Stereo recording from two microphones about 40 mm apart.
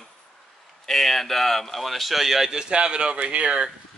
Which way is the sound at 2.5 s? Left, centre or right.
Right.